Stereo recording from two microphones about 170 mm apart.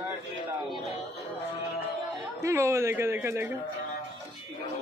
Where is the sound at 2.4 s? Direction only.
15° right (ahead or behind).